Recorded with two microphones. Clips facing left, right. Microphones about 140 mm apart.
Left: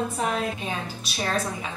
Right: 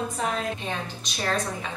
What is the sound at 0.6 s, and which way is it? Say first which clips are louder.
Speech: left 1 dB; 5° left (ahead or behind).